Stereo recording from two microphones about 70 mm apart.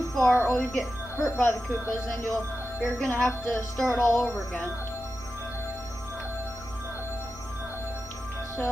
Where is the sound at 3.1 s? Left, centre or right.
Left.